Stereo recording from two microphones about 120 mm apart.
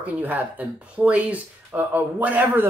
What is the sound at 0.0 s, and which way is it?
Speech, 15° right (ahead or behind).